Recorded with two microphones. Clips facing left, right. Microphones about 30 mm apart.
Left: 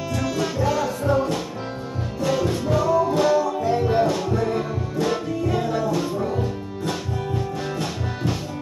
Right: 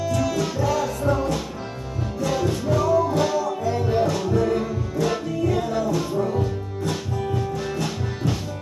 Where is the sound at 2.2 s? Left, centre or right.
Centre.